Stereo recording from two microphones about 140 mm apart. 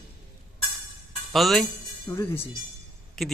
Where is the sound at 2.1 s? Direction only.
15° left (ahead or behind).